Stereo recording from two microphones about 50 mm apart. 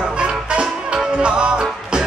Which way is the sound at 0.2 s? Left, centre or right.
Centre.